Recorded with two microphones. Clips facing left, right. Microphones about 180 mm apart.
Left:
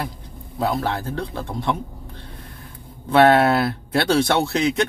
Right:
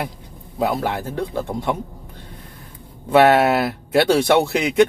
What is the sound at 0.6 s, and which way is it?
Speech, 15° right (ahead or behind).